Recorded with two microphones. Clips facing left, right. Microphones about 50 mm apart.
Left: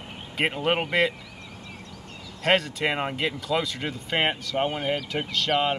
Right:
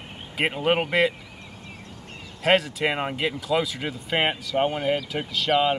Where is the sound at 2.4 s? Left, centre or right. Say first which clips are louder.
Right 2 dB; centre.